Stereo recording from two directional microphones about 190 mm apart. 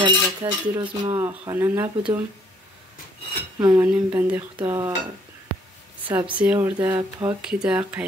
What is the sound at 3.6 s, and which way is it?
Speech, 10° right (ahead or behind).